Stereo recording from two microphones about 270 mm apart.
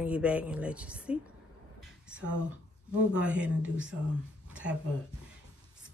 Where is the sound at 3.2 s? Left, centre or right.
Centre.